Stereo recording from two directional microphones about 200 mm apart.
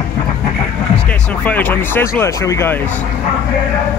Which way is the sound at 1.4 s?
10° left (ahead or behind).